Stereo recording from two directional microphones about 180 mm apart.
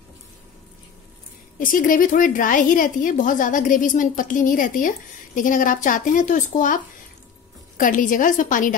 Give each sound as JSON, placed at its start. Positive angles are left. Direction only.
{"t": 1.6, "sound": "a woman's voice", "side_deg": 50}